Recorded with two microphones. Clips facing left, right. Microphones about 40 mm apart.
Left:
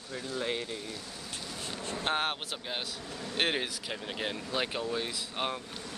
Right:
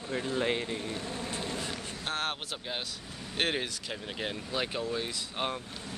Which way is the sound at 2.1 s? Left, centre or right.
Left.